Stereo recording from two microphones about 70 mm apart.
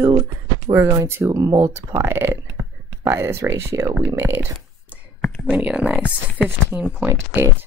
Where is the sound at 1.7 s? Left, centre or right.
Right.